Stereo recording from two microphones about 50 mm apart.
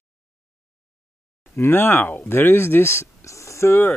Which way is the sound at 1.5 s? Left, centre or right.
Left.